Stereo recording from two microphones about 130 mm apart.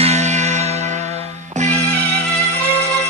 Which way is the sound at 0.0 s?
60° right (ahead or behind).